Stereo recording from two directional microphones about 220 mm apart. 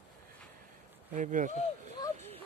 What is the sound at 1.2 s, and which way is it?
Speech, 35° right (ahead or behind).